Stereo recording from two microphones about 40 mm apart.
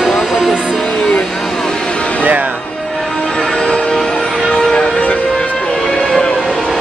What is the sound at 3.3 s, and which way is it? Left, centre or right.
Music, centre.